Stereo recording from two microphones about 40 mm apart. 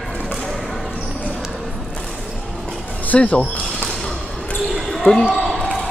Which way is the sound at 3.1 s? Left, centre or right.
Left.